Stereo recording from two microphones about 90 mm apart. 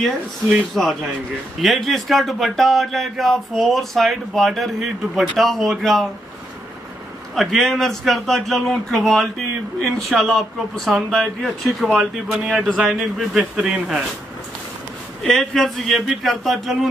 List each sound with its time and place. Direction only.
1.6 s speech: centre (ahead or behind)
7.3 s speech: centre (ahead or behind)
15.2 s speech: 5° left (ahead or behind)